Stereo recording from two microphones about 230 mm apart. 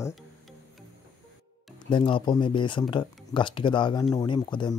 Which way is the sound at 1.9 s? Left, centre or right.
Left.